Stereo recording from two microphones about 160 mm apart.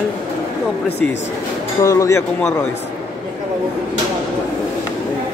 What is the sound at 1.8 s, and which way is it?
Speech, 20° left (ahead or behind).